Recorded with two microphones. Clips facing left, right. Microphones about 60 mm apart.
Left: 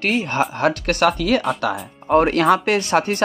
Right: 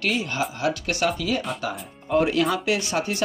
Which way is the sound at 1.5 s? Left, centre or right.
Left.